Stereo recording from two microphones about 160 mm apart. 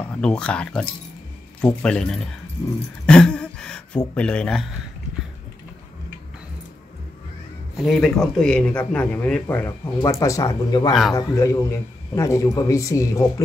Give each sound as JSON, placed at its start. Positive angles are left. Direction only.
{"t": 0.2, "sound": "speech", "side_deg": 5}
{"t": 3.1, "sound": "a sound", "side_deg": 5}
{"t": 4.1, "sound": "speech", "side_deg": 5}
{"t": 7.7, "sound": "a man's voice", "side_deg": 0}